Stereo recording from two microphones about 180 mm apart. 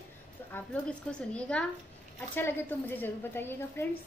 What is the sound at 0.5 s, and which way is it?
Child singing, 5° left (ahead or behind).